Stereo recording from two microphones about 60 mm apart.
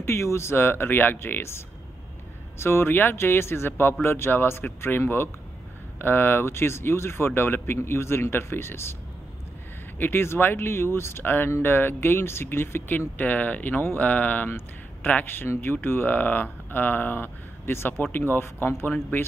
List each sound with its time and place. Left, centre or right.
0.0 s speech: left
2.6 s speech: left
9.9 s speech: left
13.2 s speech: left